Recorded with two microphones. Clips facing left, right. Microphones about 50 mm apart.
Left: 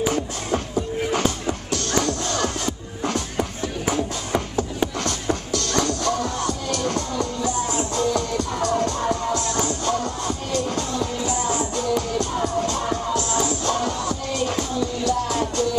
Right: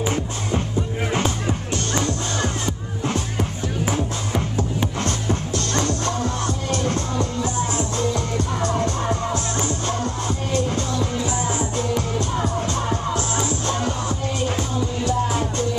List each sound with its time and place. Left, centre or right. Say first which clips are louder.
1.7 s music: left 3 dB; right
5.0 s music: right 1 dB; right
15.3 s music: left 1 dB; right